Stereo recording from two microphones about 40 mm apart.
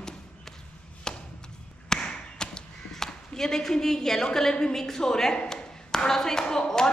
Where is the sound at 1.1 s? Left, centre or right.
Centre.